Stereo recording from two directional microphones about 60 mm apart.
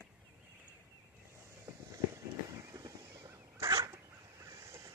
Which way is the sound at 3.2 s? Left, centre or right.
Right.